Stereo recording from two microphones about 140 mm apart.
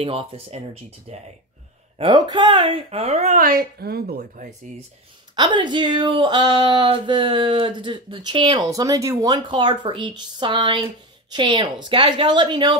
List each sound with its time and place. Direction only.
0.0 s speech: 40° right (ahead or behind)
2.0 s speech: 30° right (ahead or behind); by 3.3 s 50° right (ahead or behind)
3.3 s a woman's voice: 90° right
5.3 s speech: 35° right (ahead or behind)